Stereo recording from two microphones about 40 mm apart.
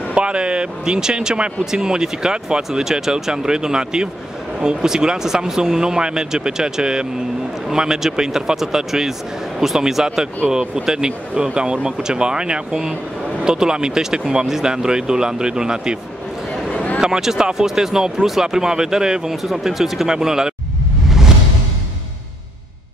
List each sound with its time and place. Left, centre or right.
0.1 s speech: right
16.7 s a sound: left
17.0 s speech: centre
19.4 s speech: centre